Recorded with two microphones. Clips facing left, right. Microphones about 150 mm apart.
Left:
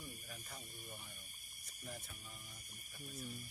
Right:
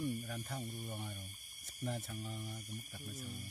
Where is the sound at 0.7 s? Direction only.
45° right (ahead or behind).